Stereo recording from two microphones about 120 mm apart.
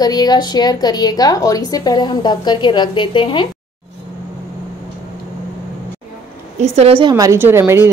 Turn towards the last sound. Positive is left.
turn(degrees=-20)  # may be behind; listen again after turning